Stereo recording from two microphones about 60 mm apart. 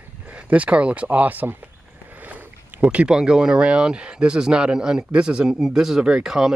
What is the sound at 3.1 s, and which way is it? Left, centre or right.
Speech, centre.